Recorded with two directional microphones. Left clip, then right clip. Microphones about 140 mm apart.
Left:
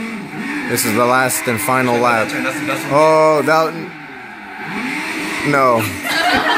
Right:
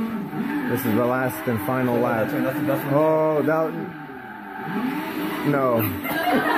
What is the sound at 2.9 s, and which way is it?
Speech, 35° left (ahead or behind).